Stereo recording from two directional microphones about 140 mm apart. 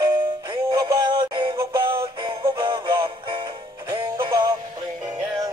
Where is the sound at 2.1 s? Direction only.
35° right (ahead or behind).